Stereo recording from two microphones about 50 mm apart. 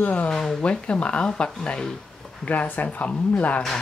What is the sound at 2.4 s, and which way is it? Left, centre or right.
Speech, left.